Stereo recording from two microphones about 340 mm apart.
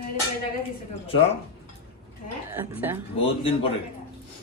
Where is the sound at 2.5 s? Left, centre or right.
Centre.